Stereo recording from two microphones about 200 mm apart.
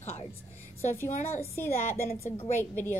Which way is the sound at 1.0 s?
35° left (ahead or behind).